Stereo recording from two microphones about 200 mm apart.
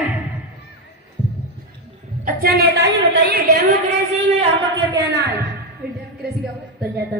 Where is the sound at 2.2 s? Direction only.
50° right (ahead or behind).